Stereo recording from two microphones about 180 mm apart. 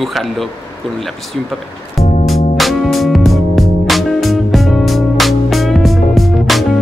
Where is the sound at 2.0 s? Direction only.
40° left (ahead or behind).